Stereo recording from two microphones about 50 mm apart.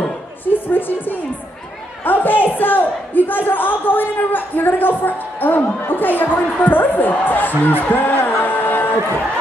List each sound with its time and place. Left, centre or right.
0.5 s a woman's voice: left